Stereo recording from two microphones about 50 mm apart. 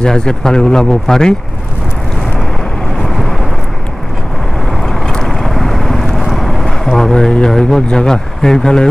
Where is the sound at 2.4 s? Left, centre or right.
Centre.